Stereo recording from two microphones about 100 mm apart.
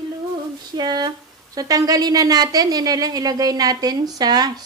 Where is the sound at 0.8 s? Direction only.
45° right (ahead or behind).